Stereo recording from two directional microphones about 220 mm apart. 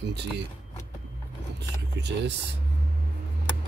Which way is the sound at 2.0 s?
50° right (ahead or behind).